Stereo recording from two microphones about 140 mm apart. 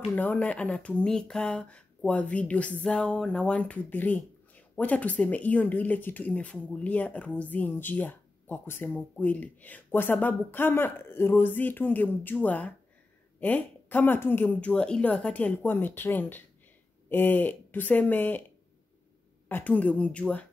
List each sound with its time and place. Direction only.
0.1 s speech: 10° left (ahead or behind)
19.5 s speech: 10° left (ahead or behind)